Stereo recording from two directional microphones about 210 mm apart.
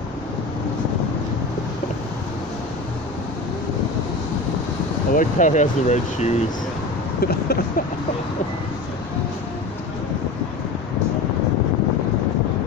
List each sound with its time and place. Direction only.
5.1 s speech: 35° left (ahead or behind)
7.2 s speech: 45° left (ahead or behind)